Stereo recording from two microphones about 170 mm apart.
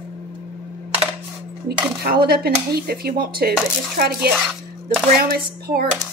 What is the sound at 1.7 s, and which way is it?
Speech, 65° right (ahead or behind).